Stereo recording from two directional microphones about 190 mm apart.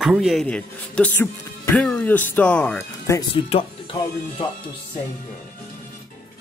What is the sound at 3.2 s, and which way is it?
Speech, 30° left (ahead or behind).